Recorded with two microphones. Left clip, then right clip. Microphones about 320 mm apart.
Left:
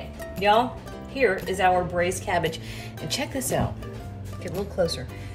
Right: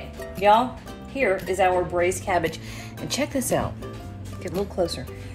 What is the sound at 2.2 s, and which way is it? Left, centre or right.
A woman's voice, centre.